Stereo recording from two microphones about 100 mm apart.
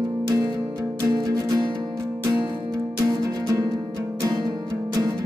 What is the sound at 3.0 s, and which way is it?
Music, 40° right (ahead or behind).